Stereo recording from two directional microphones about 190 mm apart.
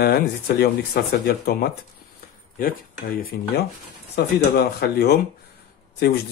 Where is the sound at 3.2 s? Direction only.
50° left (ahead or behind).